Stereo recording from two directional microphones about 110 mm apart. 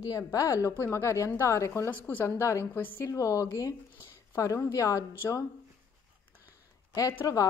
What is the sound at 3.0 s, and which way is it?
A woman's voice, 30° left (ahead or behind).